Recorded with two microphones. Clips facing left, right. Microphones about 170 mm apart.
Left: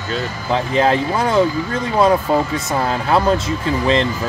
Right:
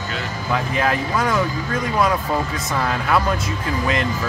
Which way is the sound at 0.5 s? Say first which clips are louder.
Left 5 dB; 25° left (ahead or behind).